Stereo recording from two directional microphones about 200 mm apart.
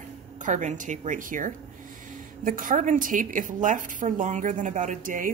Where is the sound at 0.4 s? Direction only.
40° right (ahead or behind).